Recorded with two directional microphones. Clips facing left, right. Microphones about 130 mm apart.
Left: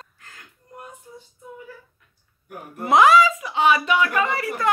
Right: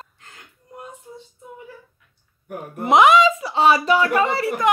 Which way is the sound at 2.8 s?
20° right (ahead or behind).